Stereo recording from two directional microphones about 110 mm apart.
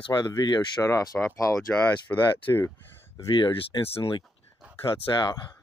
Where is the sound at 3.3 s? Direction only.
50° left (ahead or behind).